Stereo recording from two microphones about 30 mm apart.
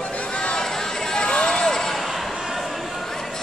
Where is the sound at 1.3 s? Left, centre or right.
Left.